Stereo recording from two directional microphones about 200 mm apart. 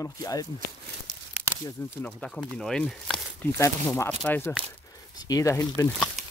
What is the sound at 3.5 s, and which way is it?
Speech, 15° left (ahead or behind).